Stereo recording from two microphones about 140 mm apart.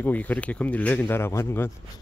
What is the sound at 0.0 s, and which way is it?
Speech, 10° left (ahead or behind).